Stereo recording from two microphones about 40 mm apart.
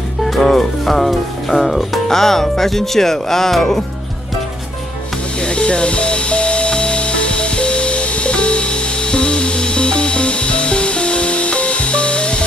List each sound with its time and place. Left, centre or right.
0.2 s speech: centre
5.4 s music: left